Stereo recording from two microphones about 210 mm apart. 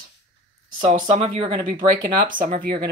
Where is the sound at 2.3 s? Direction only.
40° right (ahead or behind).